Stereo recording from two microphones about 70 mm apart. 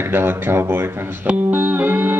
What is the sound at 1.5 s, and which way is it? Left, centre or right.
Music, right.